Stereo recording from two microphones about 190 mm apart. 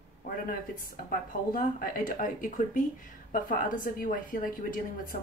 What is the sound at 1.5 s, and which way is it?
A woman's voice, 45° left (ahead or behind).